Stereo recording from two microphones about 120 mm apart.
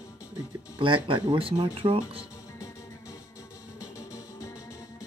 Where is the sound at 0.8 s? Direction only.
45° right (ahead or behind).